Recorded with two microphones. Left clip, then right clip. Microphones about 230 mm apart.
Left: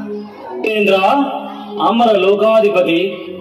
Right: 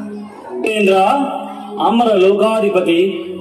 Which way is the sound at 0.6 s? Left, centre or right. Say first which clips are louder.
Even; right.